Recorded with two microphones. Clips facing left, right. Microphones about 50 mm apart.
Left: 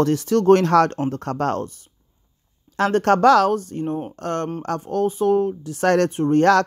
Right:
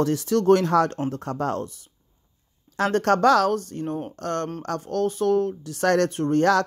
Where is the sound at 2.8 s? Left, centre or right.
Left.